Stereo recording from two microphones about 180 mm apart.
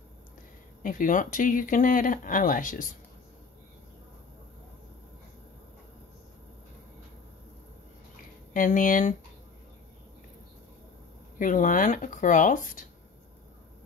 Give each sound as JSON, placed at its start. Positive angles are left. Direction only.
{"t": 0.8, "sound": "speech", "side_deg": 50}
{"t": 8.5, "sound": "speech", "side_deg": 50}
{"t": 11.3, "sound": "speech", "side_deg": 45}